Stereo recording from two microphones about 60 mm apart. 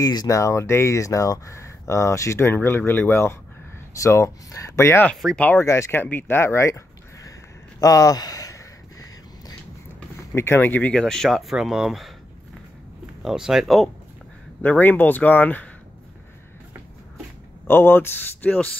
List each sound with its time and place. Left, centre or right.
0.0 s speech: left
2.5 s speech: left
3.9 s speech: left
5.2 s speech: centre
5.6 s speech: left
5.9 s speech: left
7.8 s speech: left
10.3 s speech: left
10.9 s speech: centre
11.2 s speech: centre
13.2 s speech: centre
14.6 s speech: left
17.6 s speech: left